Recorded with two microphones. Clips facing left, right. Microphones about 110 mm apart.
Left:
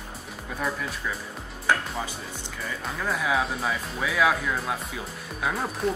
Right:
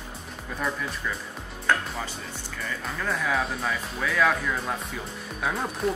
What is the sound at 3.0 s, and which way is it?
Speech, 10° left (ahead or behind).